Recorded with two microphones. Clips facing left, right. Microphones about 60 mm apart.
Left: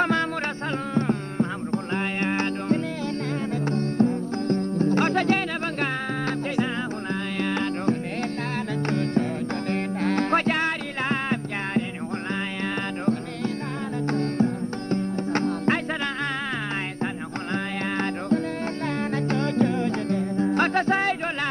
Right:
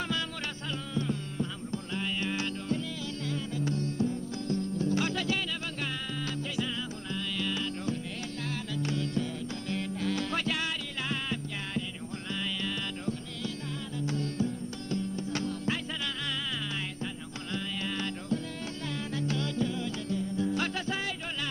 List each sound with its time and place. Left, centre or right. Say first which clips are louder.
0.9 s music: left 8 dB; left
7.3 s music: left 9 dB; left
14.0 s music: left 8 dB; left
17.0 s music: left 9 dB; left